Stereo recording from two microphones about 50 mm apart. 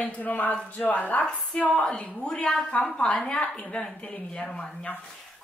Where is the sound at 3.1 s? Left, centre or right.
Left.